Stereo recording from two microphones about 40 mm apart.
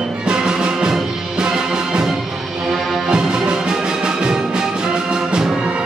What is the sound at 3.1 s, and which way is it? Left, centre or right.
Music, centre.